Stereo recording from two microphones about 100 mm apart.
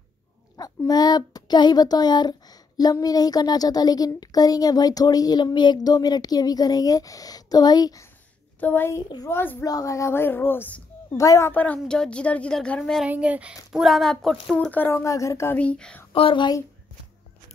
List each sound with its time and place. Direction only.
0.8 s a woman's voice: 40° left (ahead or behind)
8.5 s speech: 20° left (ahead or behind)
9.7 s speech: 35° left (ahead or behind)
11.1 s a woman's voice: 30° left (ahead or behind)
11.5 s speech: 15° left (ahead or behind)
13.0 s speech: 15° right (ahead or behind)
13.7 s speech: centre (ahead or behind)
14.7 s speech: 20° left (ahead or behind)
15.5 s speech: 10° left (ahead or behind)
16.1 s a woman's voice: 60° left (ahead or behind)